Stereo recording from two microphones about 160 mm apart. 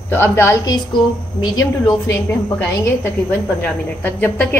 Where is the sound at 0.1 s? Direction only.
15° left (ahead or behind).